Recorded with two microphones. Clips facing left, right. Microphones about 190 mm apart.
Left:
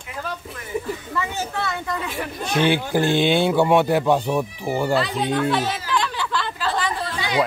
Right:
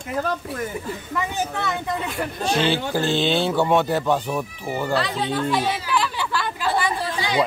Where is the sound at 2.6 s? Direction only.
15° left (ahead or behind).